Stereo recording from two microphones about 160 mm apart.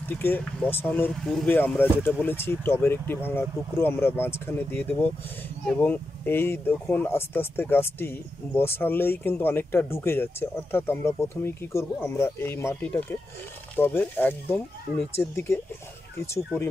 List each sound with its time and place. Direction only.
0.1 s speech: 10° left (ahead or behind)